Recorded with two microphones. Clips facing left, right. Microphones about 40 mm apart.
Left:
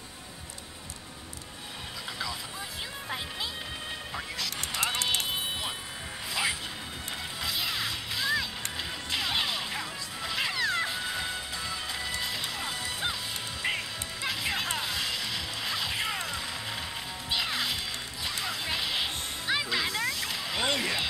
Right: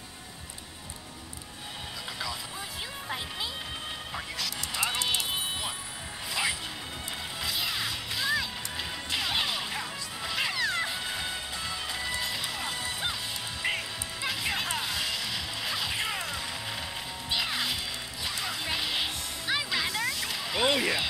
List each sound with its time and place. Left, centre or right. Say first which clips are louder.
7.4 s music: even; centre
12.6 s music: right 1 dB; right
13.7 s music: even; centre
18.4 s a sound: even; centre